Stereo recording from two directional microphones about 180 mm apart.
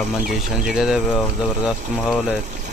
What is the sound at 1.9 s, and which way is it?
Speech, 10° left (ahead or behind).